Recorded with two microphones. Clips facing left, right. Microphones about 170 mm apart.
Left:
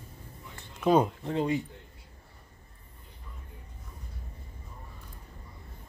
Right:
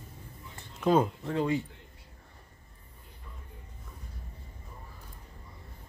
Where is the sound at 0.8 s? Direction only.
15° left (ahead or behind).